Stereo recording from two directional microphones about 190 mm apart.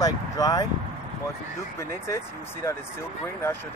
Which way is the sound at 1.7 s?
15° left (ahead or behind).